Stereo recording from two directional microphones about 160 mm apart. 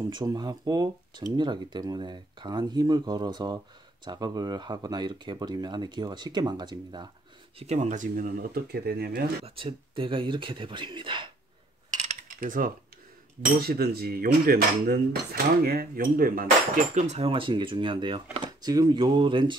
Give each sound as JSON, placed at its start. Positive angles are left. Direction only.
{"t": 0.1, "sound": "speech", "side_deg": -25}
{"t": 7.5, "sound": "speech", "side_deg": -45}
{"t": 9.6, "sound": "speech", "side_deg": -35}
{"t": 12.0, "sound": "cutlery", "side_deg": -50}
{"t": 13.6, "sound": "speech", "side_deg": -75}